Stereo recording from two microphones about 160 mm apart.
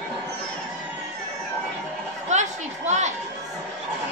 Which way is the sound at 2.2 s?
45° right (ahead or behind).